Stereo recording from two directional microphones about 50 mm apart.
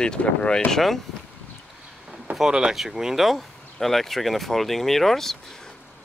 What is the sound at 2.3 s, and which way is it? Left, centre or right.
Speech, centre.